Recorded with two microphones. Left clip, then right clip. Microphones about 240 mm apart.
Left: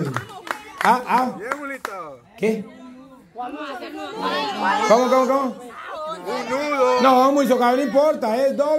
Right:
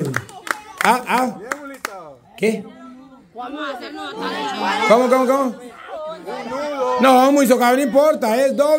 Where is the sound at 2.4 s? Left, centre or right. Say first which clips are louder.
Right 2 dB; centre.